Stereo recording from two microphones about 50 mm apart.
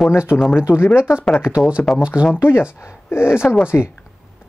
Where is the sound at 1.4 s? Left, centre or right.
Centre.